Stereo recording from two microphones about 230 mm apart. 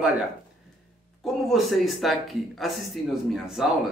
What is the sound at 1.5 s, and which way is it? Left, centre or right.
Speech, centre.